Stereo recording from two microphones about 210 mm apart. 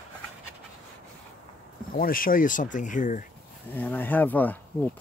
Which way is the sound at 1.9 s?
40° left (ahead or behind).